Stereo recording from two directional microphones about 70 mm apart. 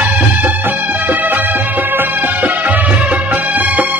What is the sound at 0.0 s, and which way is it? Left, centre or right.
Music, right.